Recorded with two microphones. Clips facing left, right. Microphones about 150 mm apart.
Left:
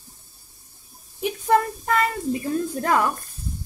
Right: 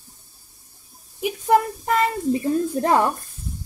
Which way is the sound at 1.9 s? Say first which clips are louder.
Right 3 dB; 25° right (ahead or behind).